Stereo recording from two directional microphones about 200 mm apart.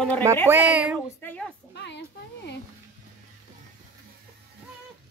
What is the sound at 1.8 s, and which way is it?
Speech, 60° left (ahead or behind).